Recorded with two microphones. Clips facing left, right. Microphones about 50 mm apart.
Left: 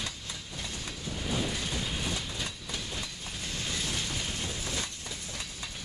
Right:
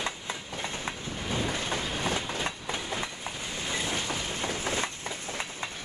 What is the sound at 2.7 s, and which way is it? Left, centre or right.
Train, right.